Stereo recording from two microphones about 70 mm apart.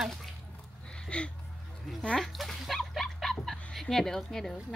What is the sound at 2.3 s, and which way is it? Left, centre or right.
Dog, centre.